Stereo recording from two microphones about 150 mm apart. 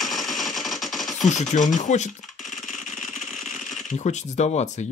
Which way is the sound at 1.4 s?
55° left (ahead or behind).